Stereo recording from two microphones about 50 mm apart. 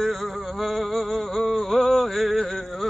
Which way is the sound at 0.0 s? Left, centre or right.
Centre.